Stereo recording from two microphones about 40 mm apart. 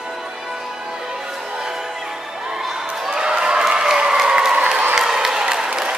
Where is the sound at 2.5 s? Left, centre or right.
Centre.